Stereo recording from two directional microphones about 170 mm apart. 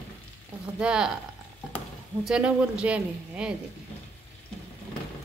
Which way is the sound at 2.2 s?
5° right (ahead or behind).